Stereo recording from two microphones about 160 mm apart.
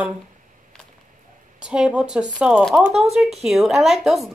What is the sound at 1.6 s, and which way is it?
Speech, 5° right (ahead or behind).